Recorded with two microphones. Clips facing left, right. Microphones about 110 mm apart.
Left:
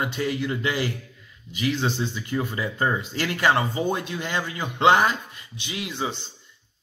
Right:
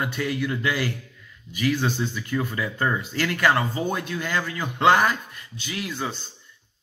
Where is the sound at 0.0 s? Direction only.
15° left (ahead or behind).